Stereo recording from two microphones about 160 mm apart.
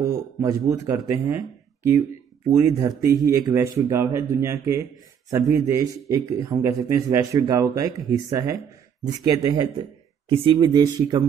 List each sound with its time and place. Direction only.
0.1 s a man's voice: 20° right (ahead or behind)
10.2 s a man's voice: 35° right (ahead or behind)